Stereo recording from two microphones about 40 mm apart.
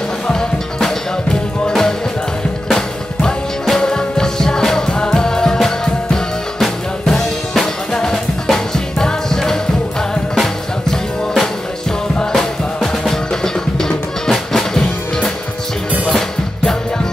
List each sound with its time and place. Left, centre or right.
0.3 s music: centre